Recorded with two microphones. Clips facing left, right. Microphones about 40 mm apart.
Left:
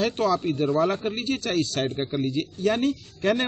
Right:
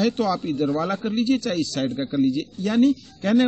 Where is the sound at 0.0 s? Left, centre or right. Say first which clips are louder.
Right 1 dB; left.